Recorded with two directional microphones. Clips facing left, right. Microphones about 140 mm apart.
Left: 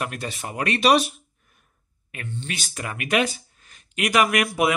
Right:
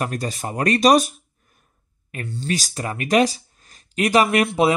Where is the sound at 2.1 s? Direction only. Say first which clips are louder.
Right 7 dB; 35° right (ahead or behind).